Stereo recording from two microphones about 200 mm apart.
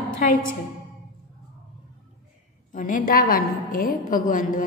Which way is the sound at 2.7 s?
40° left (ahead or behind).